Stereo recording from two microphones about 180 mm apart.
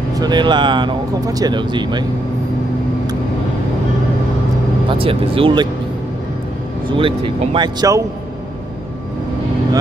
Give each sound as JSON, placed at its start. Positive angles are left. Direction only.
{"t": 0.2, "sound": "speech", "side_deg": -25}
{"t": 4.8, "sound": "speech", "side_deg": -30}
{"t": 6.9, "sound": "speech", "side_deg": -30}